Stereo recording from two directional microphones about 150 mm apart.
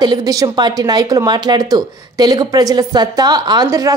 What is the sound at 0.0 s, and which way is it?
A woman's voice, 25° right (ahead or behind).